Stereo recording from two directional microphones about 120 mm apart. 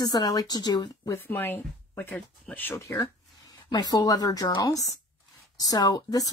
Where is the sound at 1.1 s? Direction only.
15° left (ahead or behind).